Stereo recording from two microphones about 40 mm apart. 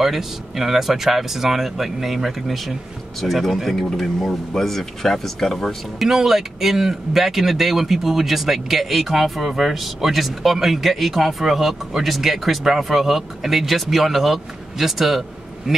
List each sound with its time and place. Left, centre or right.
0.0 s speech: centre
5.9 s speech: centre